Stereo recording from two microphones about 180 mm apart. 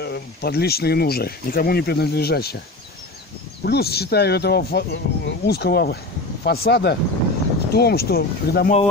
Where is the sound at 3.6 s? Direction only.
60° left (ahead or behind).